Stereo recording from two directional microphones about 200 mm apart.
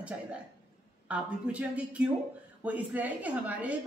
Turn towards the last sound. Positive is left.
turn(degrees=-5)  # may be behind; listen again after turning